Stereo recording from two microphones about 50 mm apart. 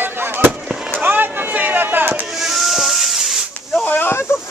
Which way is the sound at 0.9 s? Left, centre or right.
Right.